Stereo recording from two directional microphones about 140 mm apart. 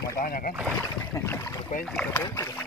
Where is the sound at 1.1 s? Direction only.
20° left (ahead or behind).